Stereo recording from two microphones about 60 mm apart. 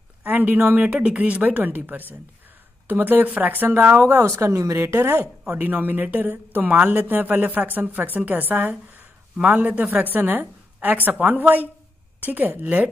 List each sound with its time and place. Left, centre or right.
0.2 s speech: right
0.9 s speech: right
4.4 s speech: right
4.8 s speech: right
5.5 s speech: right